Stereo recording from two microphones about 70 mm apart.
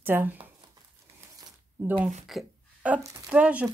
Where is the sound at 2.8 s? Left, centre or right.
Centre.